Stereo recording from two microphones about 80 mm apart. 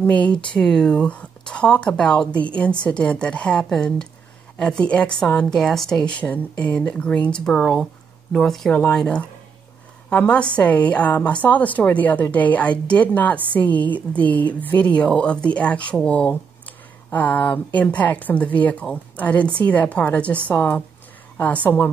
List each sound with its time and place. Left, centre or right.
0.0 s a woman's voice: centre